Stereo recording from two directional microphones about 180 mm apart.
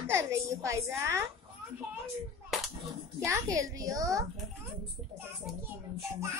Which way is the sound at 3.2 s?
15° right (ahead or behind).